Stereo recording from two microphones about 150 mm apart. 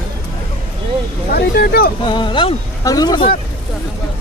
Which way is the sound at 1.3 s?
90° left.